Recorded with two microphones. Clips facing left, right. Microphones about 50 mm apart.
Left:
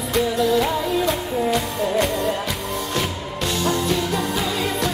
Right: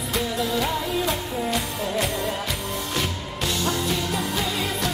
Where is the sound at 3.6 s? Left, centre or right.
Centre.